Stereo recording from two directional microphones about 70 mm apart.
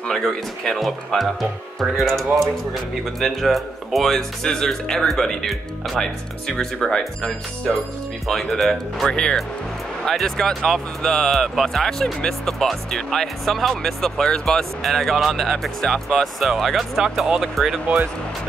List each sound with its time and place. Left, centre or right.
0.1 s speech: centre